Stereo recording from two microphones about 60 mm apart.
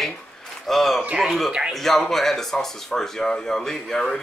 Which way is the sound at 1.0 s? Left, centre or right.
Centre.